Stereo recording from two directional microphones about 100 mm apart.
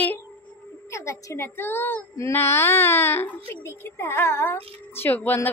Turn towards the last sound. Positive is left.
turn(degrees=20)  # may be behind; listen again after turning